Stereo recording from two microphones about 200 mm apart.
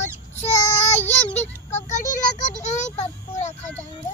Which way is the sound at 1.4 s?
10° left (ahead or behind).